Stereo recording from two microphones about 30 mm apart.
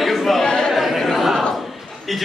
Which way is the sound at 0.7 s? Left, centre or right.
Centre.